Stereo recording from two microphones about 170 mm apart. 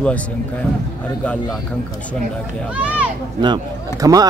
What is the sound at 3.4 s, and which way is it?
Speech, 25° right (ahead or behind).